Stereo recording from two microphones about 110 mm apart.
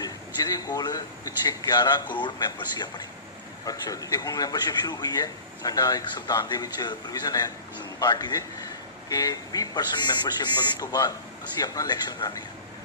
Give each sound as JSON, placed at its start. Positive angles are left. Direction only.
{"t": 0.0, "sound": "a man's voice", "side_deg": 35}
{"t": 9.1, "sound": "a man's voice", "side_deg": 35}